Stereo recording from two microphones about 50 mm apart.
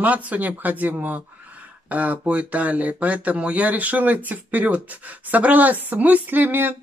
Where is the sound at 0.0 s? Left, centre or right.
Right.